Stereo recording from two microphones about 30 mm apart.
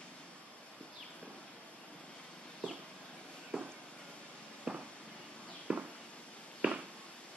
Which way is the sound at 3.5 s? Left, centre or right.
Right.